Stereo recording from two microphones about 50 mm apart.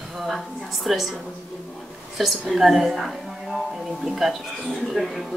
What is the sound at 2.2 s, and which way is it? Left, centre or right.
A woman's voice, centre.